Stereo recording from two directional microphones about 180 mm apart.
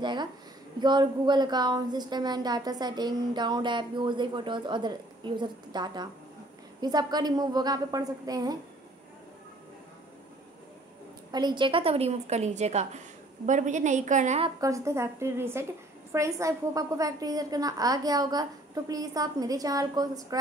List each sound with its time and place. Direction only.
0.0 s speech: 25° right (ahead or behind)
11.3 s a woman's voice: 25° right (ahead or behind)
14.6 s a woman's voice: 15° right (ahead or behind)